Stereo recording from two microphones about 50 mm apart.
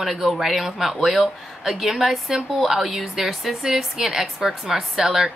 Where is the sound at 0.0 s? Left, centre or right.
Centre.